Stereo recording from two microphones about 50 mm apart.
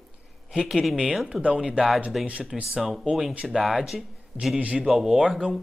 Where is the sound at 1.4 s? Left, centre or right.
Right.